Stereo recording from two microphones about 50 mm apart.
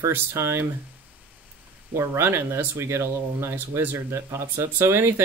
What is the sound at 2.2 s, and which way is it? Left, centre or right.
Speech, right.